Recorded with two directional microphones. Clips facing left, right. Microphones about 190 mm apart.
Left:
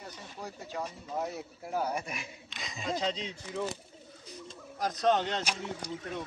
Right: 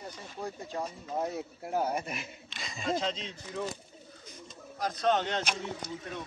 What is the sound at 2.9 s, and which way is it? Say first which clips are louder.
Speech: right 1 dB; 15° left (ahead or behind).